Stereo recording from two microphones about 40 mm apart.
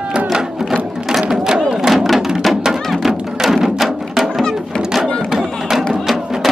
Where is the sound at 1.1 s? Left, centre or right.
Centre.